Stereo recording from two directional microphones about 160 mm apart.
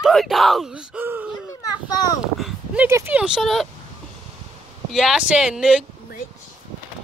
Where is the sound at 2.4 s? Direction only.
Centre (ahead or behind).